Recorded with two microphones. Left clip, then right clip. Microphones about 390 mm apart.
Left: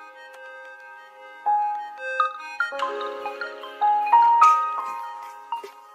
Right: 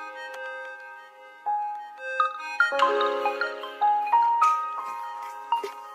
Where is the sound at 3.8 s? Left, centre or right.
Centre.